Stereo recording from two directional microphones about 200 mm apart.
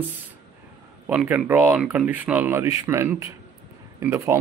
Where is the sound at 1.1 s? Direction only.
10° right (ahead or behind).